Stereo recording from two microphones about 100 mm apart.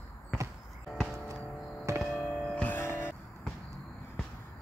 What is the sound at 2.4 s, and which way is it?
Music, 15° left (ahead or behind).